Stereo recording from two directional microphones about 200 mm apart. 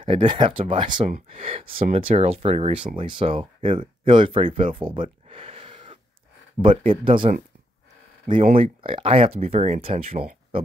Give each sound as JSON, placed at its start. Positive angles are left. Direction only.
{"t": 0.0, "sound": "speech", "side_deg": -25}
{"t": 4.7, "sound": "a sound", "side_deg": -25}
{"t": 6.6, "sound": "speech", "side_deg": -25}
{"t": 8.5, "sound": "speech", "side_deg": -25}